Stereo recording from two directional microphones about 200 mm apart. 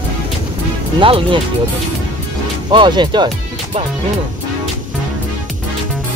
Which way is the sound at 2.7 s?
25° right (ahead or behind).